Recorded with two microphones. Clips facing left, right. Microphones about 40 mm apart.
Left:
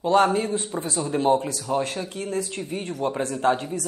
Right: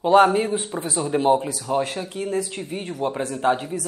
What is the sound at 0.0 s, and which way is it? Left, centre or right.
Speech, centre.